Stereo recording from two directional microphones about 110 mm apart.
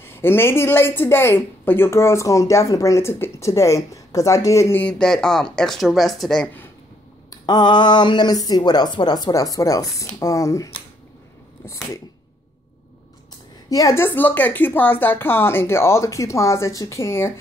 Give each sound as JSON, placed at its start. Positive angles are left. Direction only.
{"t": 0.0, "sound": "a woman's voice", "side_deg": 20}
{"t": 4.8, "sound": "speech", "side_deg": 5}
{"t": 7.2, "sound": "a woman's voice", "side_deg": 40}
{"t": 13.7, "sound": "a woman's voice", "side_deg": 30}